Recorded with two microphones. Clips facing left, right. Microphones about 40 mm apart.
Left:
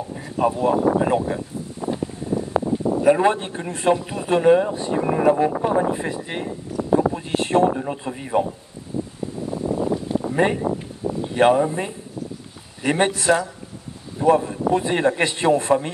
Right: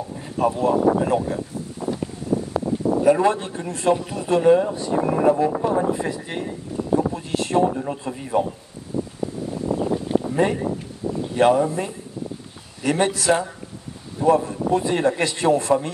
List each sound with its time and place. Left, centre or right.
0.4 s speech: left
1.0 s a sound: left
3.0 s speech: left
6.8 s a sound: left
7.3 s speech: left
7.8 s speech: centre
8.9 s wind: left
10.3 s speech: left